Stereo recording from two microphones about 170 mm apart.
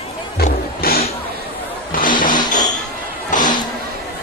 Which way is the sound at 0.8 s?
60° left (ahead or behind).